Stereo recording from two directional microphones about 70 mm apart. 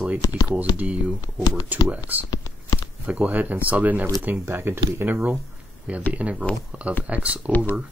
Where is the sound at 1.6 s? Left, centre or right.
Right.